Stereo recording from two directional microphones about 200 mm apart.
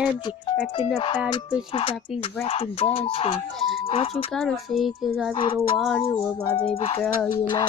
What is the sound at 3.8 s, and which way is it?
Speech, 30° left (ahead or behind).